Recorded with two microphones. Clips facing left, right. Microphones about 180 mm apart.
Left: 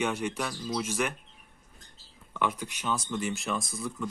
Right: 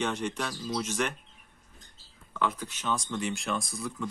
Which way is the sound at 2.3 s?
15° left (ahead or behind).